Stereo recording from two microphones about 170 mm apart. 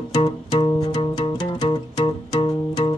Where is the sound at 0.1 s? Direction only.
30° left (ahead or behind).